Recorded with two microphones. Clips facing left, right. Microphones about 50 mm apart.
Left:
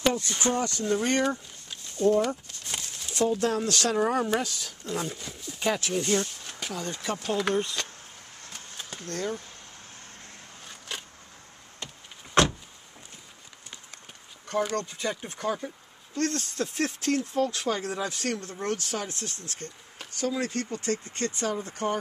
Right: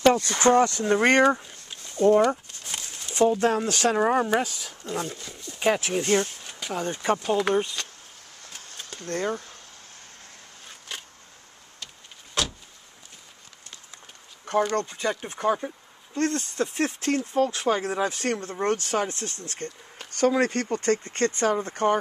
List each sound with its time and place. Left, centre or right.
0.0 s a sound: right
0.4 s speech: right
2.0 s speech: right
2.6 s a sound: centre
3.1 s speech: right
4.8 s speech: centre
5.6 s speech: centre
7.2 s speech: centre
9.1 s speech: right
12.4 s vehicle: left
14.9 s speech: centre
16.2 s speech: centre
20.1 s speech: right